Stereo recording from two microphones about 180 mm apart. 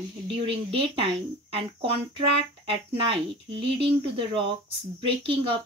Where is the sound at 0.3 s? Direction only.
30° right (ahead or behind).